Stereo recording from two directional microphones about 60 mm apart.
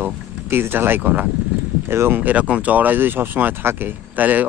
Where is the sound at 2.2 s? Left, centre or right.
Right.